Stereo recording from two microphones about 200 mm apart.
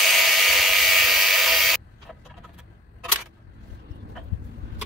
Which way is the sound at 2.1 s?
Centre (ahead or behind).